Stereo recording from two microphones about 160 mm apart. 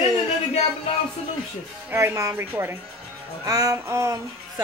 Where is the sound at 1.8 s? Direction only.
15° right (ahead or behind).